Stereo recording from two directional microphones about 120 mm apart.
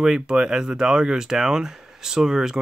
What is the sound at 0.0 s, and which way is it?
Speech, 5° right (ahead or behind).